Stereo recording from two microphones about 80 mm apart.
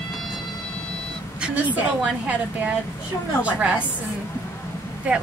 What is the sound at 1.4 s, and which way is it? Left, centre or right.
Vehicle, centre.